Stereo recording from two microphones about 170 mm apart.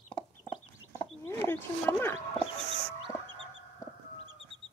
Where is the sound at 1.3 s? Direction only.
10° left (ahead or behind).